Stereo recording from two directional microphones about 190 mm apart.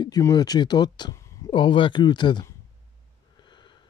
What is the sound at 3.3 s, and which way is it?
Snort, 25° left (ahead or behind).